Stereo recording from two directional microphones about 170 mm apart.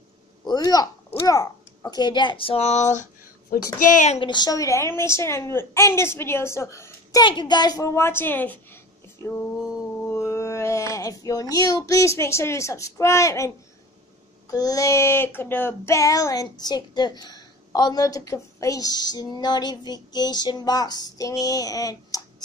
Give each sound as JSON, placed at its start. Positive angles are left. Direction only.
{"t": 0.5, "sound": "a woman's voice", "side_deg": 25}
{"t": 4.2, "sound": "a woman's voice", "side_deg": 25}
{"t": 10.0, "sound": "speech", "side_deg": 15}
{"t": 14.5, "sound": "a woman's voice", "side_deg": 20}